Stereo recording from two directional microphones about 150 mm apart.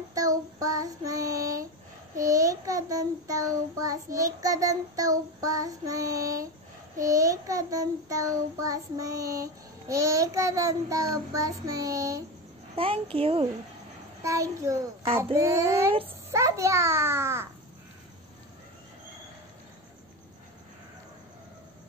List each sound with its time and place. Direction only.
0.1 s child singing: 25° right (ahead or behind)
12.7 s a child's voice: 40° right (ahead or behind)
14.2 s child singing: 20° right (ahead or behind)
16.3 s a child's voice: 20° right (ahead or behind)